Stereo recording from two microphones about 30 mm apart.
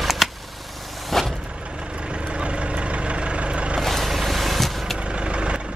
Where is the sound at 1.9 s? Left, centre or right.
Right.